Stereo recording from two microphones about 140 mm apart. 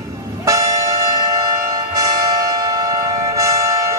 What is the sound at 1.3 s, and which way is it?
Music, 25° right (ahead or behind).